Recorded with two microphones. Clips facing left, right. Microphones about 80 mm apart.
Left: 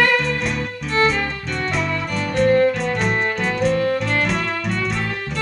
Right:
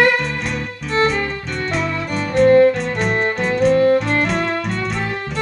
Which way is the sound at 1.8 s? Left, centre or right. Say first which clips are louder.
Right 1 dB; centre.